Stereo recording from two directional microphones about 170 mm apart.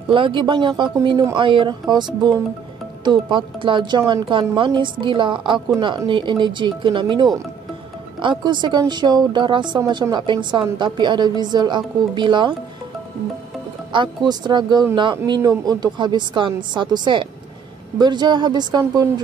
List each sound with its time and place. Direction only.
0.1 s speech: 30° right (ahead or behind)
8.5 s speech: 25° right (ahead or behind)
13.9 s speech: 25° right (ahead or behind)